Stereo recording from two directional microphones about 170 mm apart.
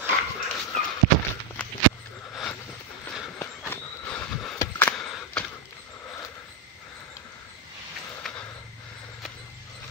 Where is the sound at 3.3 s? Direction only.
10° left (ahead or behind).